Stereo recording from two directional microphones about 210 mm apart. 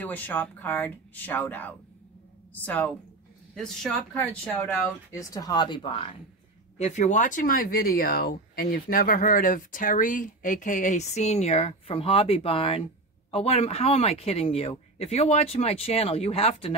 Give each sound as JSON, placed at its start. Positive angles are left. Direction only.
{"t": 0.0, "sound": "speech", "side_deg": 10}
{"t": 6.8, "sound": "speech", "side_deg": 35}